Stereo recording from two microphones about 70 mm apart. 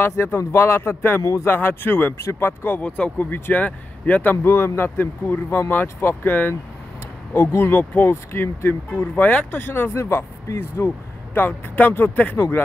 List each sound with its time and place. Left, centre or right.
0.1 s speech: left
1.2 s speech: left
1.5 s speech: left
4.5 s speech: left